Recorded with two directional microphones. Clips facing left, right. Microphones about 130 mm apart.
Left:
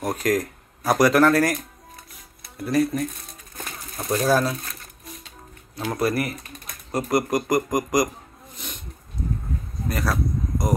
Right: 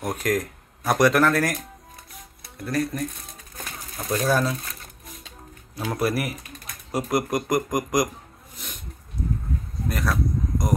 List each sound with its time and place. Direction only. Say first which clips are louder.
0.0 s speech: left 2 dB; centre (ahead or behind)
3.5 s bird: left 2 dB; 15° left (ahead or behind)
4.1 s speech: left 2 dB; 5° left (ahead or behind)
5.9 s speech: left 1 dB; 5° right (ahead or behind)
8.5 s a sound: left 2 dB; centre (ahead or behind)
9.8 s speech: left 1 dB; centre (ahead or behind)